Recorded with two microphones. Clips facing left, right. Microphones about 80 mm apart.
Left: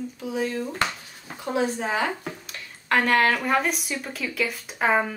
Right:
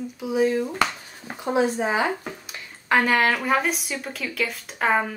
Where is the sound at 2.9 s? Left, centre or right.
Centre.